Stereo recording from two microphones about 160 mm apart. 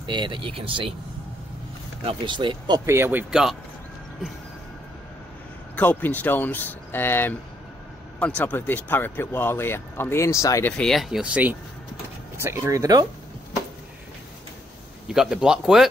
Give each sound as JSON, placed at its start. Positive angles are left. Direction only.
{"t": 0.0, "sound": "speech", "side_deg": -30}
{"t": 2.0, "sound": "speech", "side_deg": -30}
{"t": 2.9, "sound": "speech", "side_deg": -15}
{"t": 5.8, "sound": "speech", "side_deg": 10}
{"t": 10.8, "sound": "speech", "side_deg": 0}
{"t": 15.0, "sound": "speech", "side_deg": -5}